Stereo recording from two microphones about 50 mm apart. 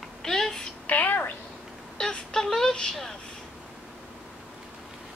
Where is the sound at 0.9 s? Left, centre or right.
Left.